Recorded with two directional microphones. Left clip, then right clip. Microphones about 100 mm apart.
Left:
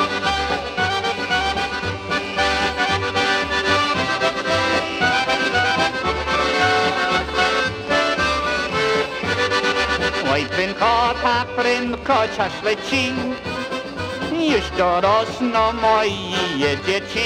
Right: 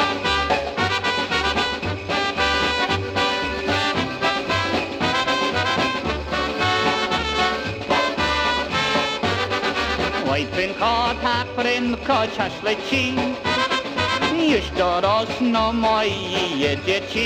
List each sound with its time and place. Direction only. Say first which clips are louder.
12.1 s music: left 3 dB; 20° right (ahead or behind)
14.8 s music: left 4 dB; 25° right (ahead or behind)
15.0 s speech: left 2 dB; 10° right (ahead or behind)